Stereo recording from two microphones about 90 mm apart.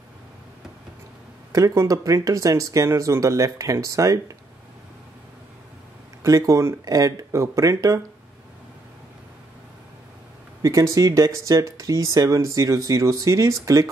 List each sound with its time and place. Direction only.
1.5 s speech: 40° right (ahead or behind)
6.2 s speech: 40° right (ahead or behind)
10.6 s speech: 40° right (ahead or behind)